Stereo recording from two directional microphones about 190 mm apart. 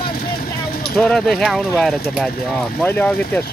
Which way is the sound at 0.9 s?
5° left (ahead or behind).